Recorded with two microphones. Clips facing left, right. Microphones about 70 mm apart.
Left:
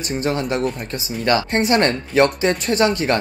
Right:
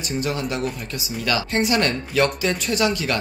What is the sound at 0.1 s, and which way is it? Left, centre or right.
Speech, left.